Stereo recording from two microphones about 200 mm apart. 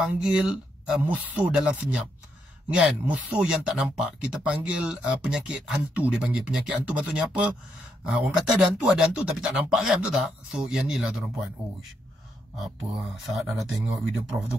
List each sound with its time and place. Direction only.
0.0 s speech: 5° right (ahead or behind)
13.3 s speech: centre (ahead or behind)